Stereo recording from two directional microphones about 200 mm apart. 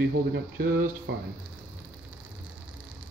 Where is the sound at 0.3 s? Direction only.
50° right (ahead or behind).